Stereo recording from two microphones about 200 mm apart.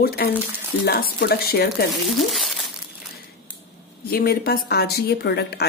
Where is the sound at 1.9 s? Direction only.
Centre (ahead or behind).